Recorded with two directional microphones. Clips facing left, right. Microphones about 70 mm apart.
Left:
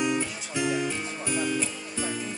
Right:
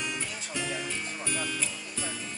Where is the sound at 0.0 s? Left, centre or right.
Centre.